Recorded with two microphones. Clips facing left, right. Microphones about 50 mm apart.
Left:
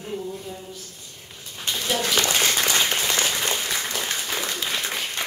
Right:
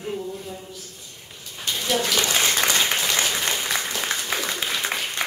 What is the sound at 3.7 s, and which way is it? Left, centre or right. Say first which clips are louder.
Applause: right 1 dB; centre.